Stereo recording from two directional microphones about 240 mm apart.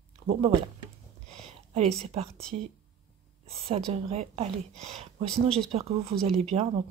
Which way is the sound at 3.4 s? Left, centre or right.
Right.